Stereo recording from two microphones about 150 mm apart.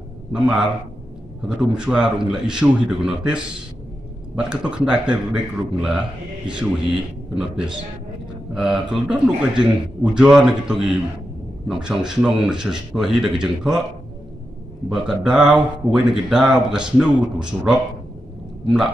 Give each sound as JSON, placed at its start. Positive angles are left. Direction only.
{"t": 0.3, "sound": "speech", "side_deg": -5}
{"t": 1.7, "sound": "a man's voice", "side_deg": -5}
{"t": 14.9, "sound": "speech", "side_deg": -5}